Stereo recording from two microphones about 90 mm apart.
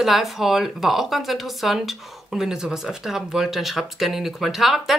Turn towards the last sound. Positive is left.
turn(degrees=-5)  # may be behind; listen again after turning